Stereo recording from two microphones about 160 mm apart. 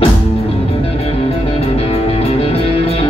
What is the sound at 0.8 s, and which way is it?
Music, 40° left (ahead or behind).